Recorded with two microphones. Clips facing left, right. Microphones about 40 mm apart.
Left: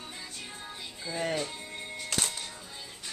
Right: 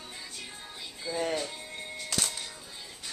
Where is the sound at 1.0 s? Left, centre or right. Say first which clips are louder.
Right 1 dB; centre.